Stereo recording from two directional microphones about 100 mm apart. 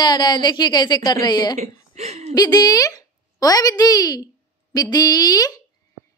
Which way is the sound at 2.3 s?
40° left (ahead or behind).